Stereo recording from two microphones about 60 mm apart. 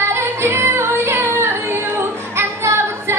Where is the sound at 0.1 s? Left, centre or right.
Right.